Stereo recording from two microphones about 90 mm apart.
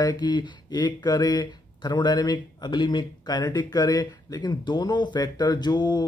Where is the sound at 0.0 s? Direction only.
50° left (ahead or behind).